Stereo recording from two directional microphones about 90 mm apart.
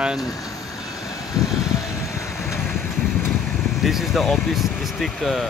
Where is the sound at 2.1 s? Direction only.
30° left (ahead or behind).